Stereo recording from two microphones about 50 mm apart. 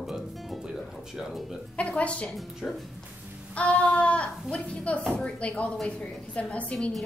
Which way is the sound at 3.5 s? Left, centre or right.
Left.